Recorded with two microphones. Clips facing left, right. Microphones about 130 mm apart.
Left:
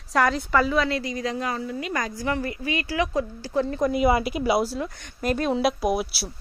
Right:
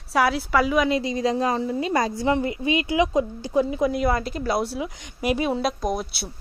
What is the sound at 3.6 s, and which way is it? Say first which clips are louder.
Speech: right 1 dB; 5° right (ahead or behind).